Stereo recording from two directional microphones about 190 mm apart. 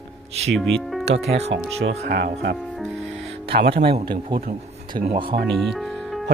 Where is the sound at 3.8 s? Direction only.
55° right (ahead or behind).